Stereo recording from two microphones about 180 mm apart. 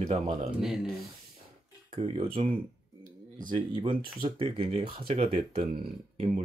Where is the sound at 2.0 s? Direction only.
30° right (ahead or behind).